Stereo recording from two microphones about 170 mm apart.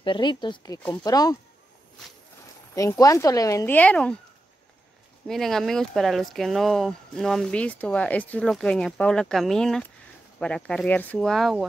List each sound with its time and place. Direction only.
0.0 s speech: 25° left (ahead or behind)
2.7 s speech: 20° left (ahead or behind)
5.2 s speech: centre (ahead or behind)